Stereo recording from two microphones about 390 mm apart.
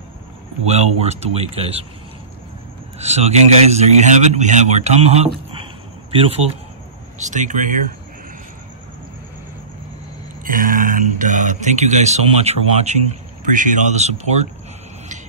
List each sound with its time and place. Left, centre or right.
0.7 s a man's voice: centre
3.0 s a man's voice: centre
7.2 s speech: centre
10.4 s speech: right